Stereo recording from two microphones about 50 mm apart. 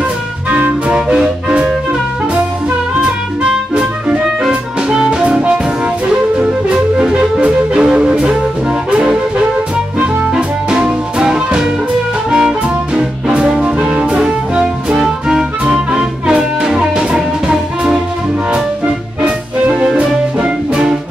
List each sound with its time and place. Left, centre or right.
0.5 s music: right
0.9 s music: centre
3.7 s music: centre
10.3 s music: centre
20.0 s music: right